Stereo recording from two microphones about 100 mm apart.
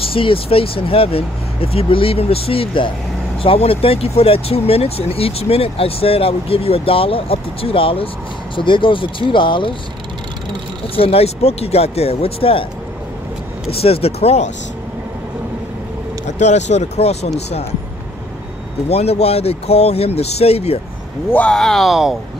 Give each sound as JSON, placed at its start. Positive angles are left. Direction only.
{"t": 0.0, "sound": "speech", "side_deg": 65}
{"t": 11.0, "sound": "speech", "side_deg": 80}
{"t": 13.7, "sound": "speech", "side_deg": 75}
{"t": 16.9, "sound": "speech", "side_deg": 90}
{"t": 18.9, "sound": "speech", "side_deg": 90}
{"t": 21.3, "sound": "speech", "side_deg": 10}